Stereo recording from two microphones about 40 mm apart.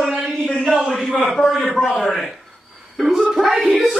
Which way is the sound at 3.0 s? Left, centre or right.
Centre.